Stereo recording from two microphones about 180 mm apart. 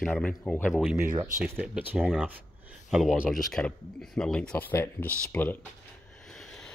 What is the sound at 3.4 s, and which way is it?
Speech, 5° left (ahead or behind).